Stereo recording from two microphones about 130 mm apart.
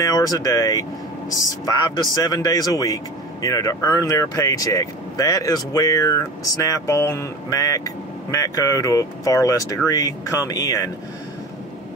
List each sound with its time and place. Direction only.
0.0 s speech: 25° left (ahead or behind)